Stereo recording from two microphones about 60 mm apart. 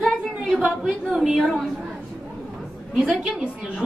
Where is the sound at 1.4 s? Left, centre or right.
Centre.